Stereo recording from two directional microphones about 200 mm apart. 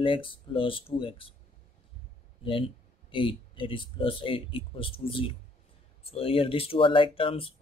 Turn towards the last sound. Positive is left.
turn(degrees=25)  # may be behind; listen again after turning